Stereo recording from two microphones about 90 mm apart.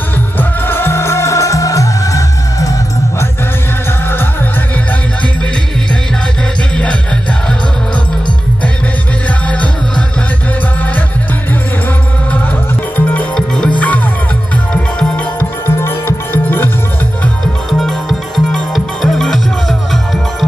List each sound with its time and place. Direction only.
0.4 s music: 25° left (ahead or behind)
9.5 s music: 15° left (ahead or behind)
12.9 s music: 20° left (ahead or behind)
15.6 s music: 30° left (ahead or behind)
17.6 s music: 5° left (ahead or behind)